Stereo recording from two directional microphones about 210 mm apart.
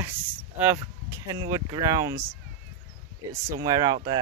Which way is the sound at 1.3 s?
15° right (ahead or behind).